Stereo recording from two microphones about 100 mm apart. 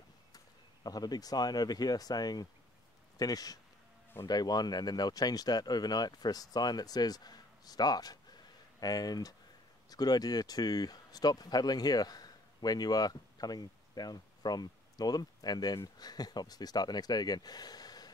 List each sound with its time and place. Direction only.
0.8 s speech: 40° left (ahead or behind)